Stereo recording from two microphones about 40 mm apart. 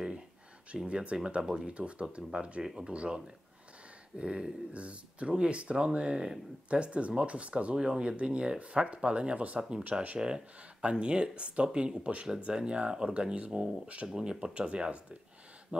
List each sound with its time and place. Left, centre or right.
0.8 s speech: right
1.7 s speech: right
2.6 s speech: centre
2.9 s speech: right
4.2 s speech: right
9.6 s speech: centre
14.0 s speech: centre; by 15.9 s right